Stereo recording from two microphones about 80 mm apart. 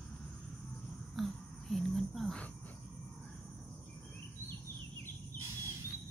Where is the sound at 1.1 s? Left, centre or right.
Centre.